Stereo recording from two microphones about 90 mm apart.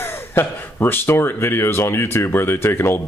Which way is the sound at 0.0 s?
25° left (ahead or behind).